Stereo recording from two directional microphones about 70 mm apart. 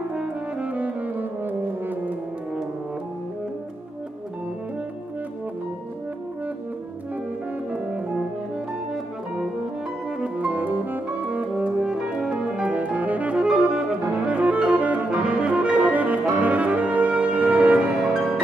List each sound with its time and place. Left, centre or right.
0.1 s brass instrument: centre
10.2 s music: right
12.6 s saxophone: right